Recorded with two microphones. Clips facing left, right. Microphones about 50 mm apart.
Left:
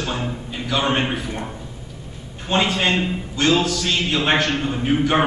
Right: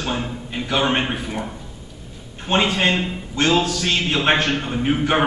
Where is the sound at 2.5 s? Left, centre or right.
Centre.